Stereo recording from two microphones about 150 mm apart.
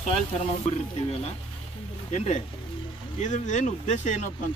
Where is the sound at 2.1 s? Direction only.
50° left (ahead or behind).